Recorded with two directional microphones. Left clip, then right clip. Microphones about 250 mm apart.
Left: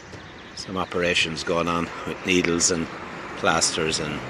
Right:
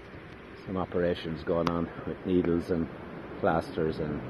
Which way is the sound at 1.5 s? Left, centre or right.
Left.